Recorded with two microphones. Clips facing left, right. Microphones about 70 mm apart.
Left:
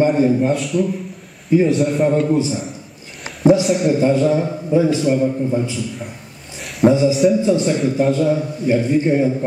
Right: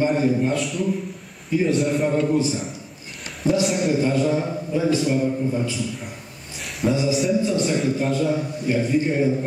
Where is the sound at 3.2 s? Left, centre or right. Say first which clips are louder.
Left 9 dB; left.